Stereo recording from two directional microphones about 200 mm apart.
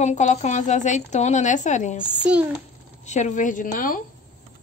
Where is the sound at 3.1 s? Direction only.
35° left (ahead or behind).